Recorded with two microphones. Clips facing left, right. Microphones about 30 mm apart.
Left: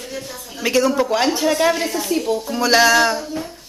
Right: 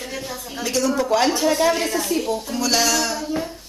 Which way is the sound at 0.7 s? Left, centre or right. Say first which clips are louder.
Left 4 dB; centre.